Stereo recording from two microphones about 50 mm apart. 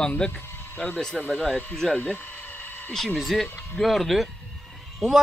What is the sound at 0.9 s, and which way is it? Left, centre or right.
Speech, centre.